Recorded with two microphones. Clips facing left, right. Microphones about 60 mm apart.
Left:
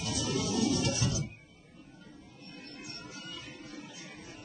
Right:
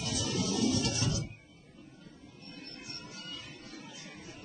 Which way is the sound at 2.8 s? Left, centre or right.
Centre.